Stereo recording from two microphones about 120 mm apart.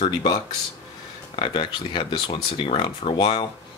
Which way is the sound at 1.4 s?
45° left (ahead or behind).